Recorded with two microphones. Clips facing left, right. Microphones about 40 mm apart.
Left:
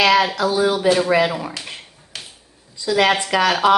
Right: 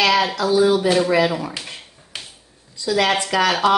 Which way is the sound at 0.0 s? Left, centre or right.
Centre.